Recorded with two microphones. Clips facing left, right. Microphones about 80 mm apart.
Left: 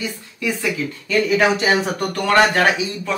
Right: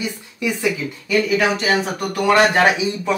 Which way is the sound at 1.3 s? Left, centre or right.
Centre.